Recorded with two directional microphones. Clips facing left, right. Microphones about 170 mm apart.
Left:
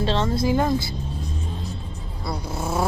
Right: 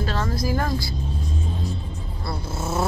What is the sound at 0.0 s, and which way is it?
Music, 25° left (ahead or behind).